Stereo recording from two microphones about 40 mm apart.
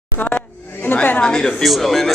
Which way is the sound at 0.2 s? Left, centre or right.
Left.